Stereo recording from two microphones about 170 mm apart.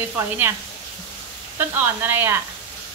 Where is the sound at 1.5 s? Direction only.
10° right (ahead or behind).